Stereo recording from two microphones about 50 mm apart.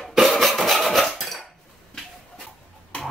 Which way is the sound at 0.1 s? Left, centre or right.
Centre.